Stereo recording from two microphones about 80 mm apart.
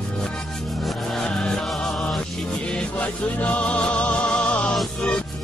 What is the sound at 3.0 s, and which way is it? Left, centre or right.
Music, centre.